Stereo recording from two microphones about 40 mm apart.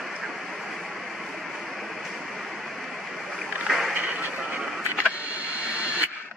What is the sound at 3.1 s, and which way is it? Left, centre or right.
Boat, centre.